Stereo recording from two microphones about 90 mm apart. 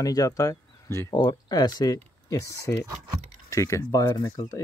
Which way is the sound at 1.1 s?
50° left (ahead or behind).